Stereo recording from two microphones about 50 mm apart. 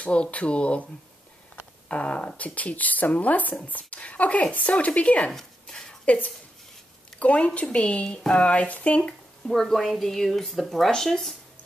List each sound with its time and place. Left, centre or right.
0.0 s speech: left
1.9 s speech: left
5.3 s a sound: centre
6.0 s speech: left
9.5 s speech: centre